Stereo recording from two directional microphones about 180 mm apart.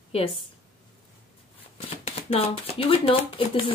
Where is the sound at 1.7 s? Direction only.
30° left (ahead or behind).